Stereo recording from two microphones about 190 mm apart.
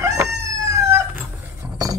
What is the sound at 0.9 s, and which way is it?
Dog, 15° right (ahead or behind).